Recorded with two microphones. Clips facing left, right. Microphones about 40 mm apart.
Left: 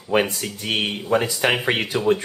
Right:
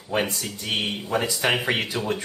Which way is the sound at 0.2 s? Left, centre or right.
Centre.